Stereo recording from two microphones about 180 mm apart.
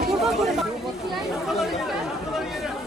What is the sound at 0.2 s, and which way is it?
Chatter, centre (ahead or behind).